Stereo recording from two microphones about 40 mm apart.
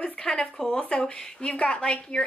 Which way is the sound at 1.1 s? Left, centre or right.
Centre.